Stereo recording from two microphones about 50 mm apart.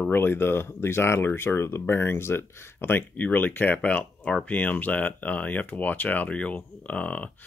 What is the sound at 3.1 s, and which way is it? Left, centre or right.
Speech, left.